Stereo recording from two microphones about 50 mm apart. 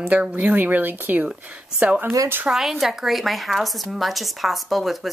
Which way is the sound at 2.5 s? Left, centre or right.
Centre.